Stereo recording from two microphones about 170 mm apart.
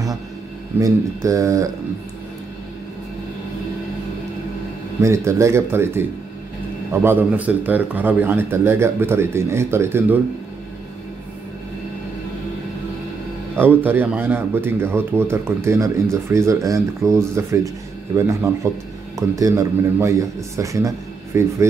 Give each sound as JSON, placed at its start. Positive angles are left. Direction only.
{"t": 0.7, "sound": "speech", "side_deg": -20}
{"t": 5.0, "sound": "speech", "side_deg": -15}
{"t": 13.8, "sound": "speech", "side_deg": -10}